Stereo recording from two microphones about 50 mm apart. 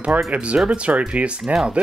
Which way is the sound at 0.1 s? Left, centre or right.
Right.